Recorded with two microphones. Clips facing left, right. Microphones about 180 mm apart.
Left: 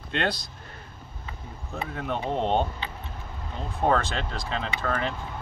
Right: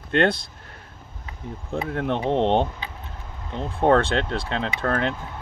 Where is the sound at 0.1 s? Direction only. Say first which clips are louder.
Right 8 dB; 55° right (ahead or behind).